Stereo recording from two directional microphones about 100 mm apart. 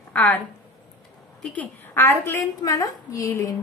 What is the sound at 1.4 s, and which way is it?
A woman's voice, 15° left (ahead or behind).